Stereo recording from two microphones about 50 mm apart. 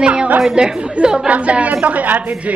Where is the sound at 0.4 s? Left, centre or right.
Centre.